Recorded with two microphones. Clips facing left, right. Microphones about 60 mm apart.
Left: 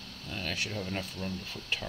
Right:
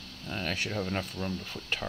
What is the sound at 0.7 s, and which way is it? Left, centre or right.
Speech, right.